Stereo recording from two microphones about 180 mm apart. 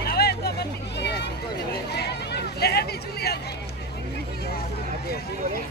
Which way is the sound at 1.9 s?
65° left (ahead or behind).